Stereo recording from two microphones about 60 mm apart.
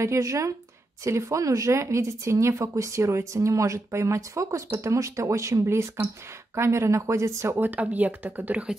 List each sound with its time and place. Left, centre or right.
0.0 s speech: right
7.5 s speech: right